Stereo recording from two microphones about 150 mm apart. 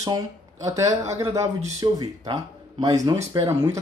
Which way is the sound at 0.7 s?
20° right (ahead or behind).